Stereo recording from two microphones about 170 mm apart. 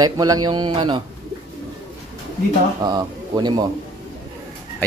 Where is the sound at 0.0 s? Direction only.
20° right (ahead or behind).